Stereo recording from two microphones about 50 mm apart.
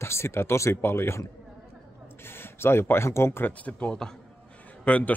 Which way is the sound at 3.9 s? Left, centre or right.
Centre.